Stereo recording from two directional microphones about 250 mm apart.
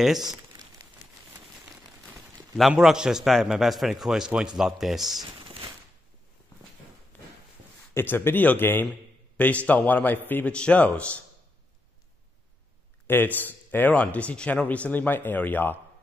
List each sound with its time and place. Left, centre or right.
0.0 s a man's voice: centre
2.5 s a man's voice: centre
5.2 s crumpling: right
7.1 s a sound: centre
7.9 s a man's voice: centre
13.0 s speech: centre